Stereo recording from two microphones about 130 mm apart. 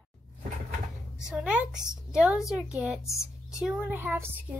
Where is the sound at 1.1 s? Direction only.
5° right (ahead or behind).